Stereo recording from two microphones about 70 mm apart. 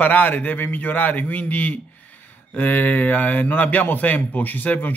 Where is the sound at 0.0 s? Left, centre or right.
Left.